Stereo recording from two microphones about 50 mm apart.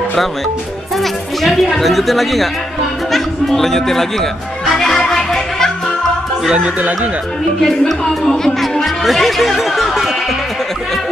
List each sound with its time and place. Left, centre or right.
0.9 s speech: centre
3.1 s music: centre
6.5 s speech: right
7.6 s speech: centre